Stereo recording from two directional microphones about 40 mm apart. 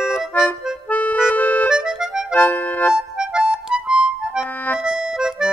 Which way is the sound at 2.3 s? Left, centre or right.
Left.